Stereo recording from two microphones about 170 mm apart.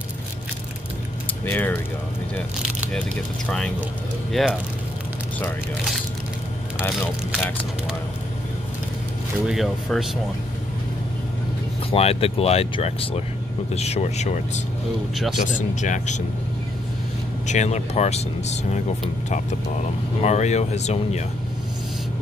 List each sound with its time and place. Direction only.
1.4 s speech: 10° left (ahead or behind)
3.4 s speech: 5° left (ahead or behind)
9.5 s speech: centre (ahead or behind)
11.9 s speech: 35° left (ahead or behind)
17.5 s speech: 45° left (ahead or behind)
20.2 s speech: 40° left (ahead or behind)